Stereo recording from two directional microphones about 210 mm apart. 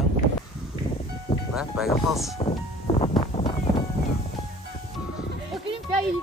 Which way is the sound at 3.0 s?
25° left (ahead or behind).